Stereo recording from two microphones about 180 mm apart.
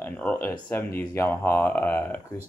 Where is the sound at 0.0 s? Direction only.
10° left (ahead or behind).